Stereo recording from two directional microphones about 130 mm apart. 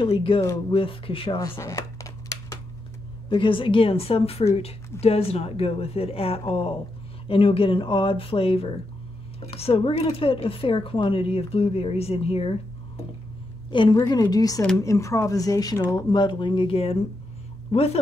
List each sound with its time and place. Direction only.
0.0 s speech: 40° left (ahead or behind)
1.6 s a sound: 25° left (ahead or behind)
3.3 s speech: 40° left (ahead or behind)
13.7 s speech: 40° left (ahead or behind)